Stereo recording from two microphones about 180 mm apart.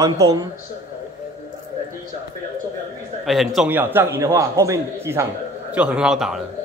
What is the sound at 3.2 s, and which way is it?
A man's voice, centre (ahead or behind).